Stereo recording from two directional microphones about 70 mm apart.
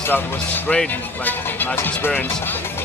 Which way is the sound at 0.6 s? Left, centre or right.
Centre.